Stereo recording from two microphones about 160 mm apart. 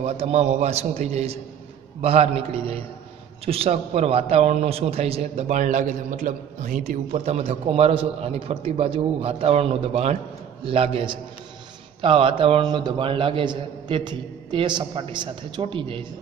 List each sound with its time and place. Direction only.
0.0 s a man's voice: 45° right (ahead or behind)